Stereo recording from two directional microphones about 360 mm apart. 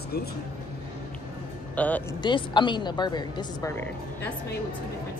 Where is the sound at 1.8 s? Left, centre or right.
Centre.